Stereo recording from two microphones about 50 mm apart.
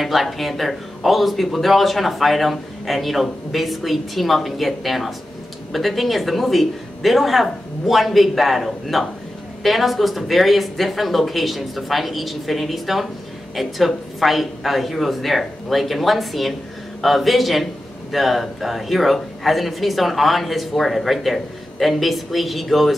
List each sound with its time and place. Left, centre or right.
0.0 s speech: centre